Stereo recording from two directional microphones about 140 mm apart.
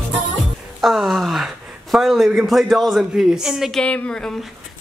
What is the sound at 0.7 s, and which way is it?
A woman's voice, centre (ahead or behind).